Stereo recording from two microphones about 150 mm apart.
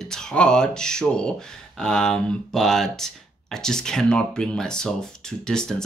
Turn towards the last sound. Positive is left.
turn(degrees=5)  # may be behind; listen again after turning